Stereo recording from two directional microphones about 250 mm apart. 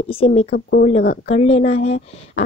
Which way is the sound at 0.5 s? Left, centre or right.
Left.